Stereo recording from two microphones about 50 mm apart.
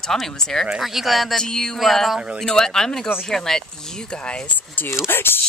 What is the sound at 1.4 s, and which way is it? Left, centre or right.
Speech, centre.